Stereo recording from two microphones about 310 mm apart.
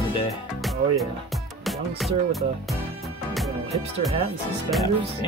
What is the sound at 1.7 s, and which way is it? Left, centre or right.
Speech, centre.